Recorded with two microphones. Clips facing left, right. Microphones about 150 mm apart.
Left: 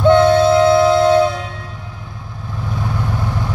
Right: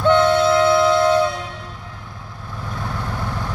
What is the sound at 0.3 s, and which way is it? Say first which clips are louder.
Music: left 4 dB; 30° left (ahead or behind).